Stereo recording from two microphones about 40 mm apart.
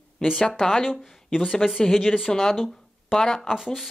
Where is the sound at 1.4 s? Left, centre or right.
Left.